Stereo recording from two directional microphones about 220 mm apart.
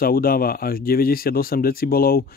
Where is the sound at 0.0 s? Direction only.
40° left (ahead or behind).